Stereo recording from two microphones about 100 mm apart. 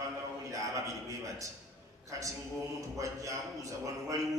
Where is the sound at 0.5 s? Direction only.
35° right (ahead or behind).